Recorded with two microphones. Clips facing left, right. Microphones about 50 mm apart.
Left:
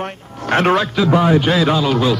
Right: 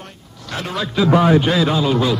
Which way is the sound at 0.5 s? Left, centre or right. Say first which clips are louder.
Left 10 dB; left.